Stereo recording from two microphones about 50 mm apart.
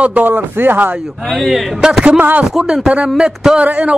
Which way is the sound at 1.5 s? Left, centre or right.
Centre.